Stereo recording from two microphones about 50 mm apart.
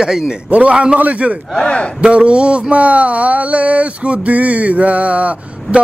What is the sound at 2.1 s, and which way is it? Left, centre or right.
Speech, right.